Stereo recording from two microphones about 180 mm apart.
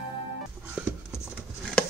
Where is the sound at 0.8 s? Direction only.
5° right (ahead or behind).